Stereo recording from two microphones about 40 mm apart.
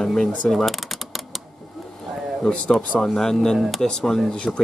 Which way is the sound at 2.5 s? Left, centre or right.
Left.